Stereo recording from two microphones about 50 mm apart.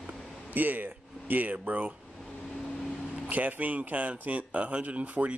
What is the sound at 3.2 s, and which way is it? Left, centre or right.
Speech, right.